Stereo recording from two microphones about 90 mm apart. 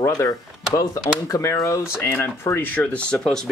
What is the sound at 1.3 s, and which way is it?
Speech, 35° left (ahead or behind).